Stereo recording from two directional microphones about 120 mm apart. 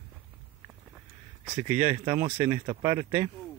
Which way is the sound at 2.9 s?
30° right (ahead or behind).